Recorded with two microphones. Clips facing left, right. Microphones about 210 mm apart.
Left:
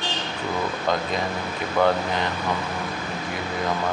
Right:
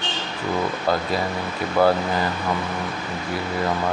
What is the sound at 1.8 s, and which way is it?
Speech, 5° right (ahead or behind).